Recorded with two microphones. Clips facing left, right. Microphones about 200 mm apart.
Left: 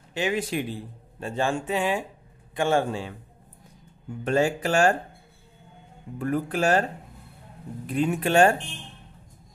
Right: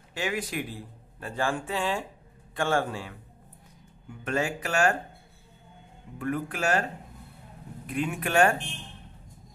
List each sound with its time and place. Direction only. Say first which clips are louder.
0.1 s speech: left 5 dB; 25° left (ahead or behind)
4.2 s speech: left 6 dB; 30° left (ahead or behind)
6.1 s speech: left 5 dB; 35° left (ahead or behind)